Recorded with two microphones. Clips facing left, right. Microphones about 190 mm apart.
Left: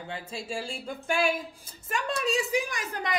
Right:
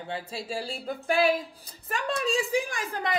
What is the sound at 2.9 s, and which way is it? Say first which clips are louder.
Speech: right 2 dB; 15° left (ahead or behind).